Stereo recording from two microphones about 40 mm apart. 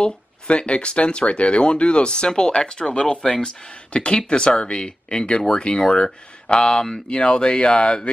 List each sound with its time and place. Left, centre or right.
0.0 s speech: left